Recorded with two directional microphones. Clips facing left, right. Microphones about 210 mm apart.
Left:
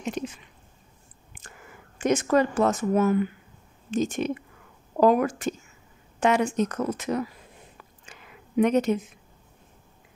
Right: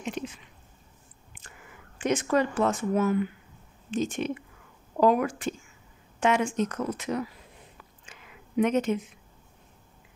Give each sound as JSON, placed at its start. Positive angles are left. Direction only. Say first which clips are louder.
{"t": 0.2, "sound": "speech", "louder": "left 3 dB", "side_deg": 40}
{"t": 1.3, "sound": "whispering", "louder": "left 4 dB", "side_deg": 45}
{"t": 2.0, "sound": "speech", "louder": "left 3 dB", "side_deg": 45}
{"t": 8.0, "sound": "a sound", "louder": "left 2 dB", "side_deg": 40}